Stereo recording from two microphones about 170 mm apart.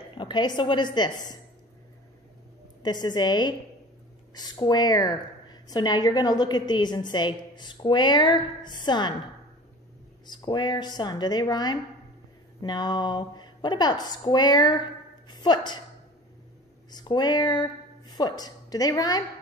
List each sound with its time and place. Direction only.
0.2 s a woman's voice: 25° left (ahead or behind)
2.8 s a woman's voice: 25° left (ahead or behind)
10.2 s a woman's voice: 25° left (ahead or behind)
16.9 s speech: 25° left (ahead or behind)